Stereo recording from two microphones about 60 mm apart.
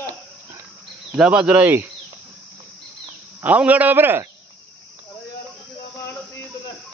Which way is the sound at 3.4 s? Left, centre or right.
Right.